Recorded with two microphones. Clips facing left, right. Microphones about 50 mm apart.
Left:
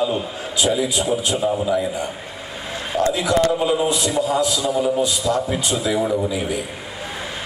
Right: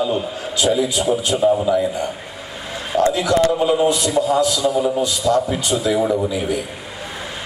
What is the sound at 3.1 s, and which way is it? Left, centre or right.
Speech, centre.